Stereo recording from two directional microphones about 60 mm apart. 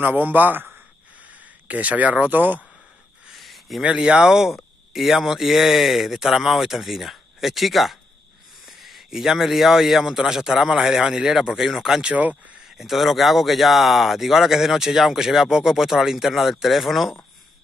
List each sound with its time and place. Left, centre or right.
0.0 s a man's voice: right
3.3 s a sound: centre
3.8 s speech: centre
12.0 s speech: right
12.6 s speech: centre